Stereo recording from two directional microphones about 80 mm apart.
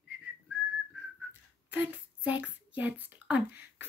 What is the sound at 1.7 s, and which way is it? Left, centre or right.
Female singing, right.